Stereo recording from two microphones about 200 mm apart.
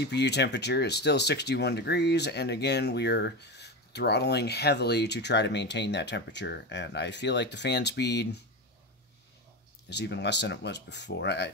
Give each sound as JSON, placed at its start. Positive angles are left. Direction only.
{"t": 0.0, "sound": "speech", "side_deg": 55}
{"t": 9.8, "sound": "speech", "side_deg": 60}